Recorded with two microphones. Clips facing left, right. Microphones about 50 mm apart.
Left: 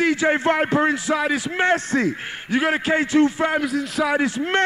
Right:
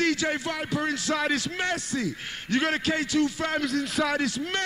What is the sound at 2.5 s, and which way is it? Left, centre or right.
A man's voice, centre.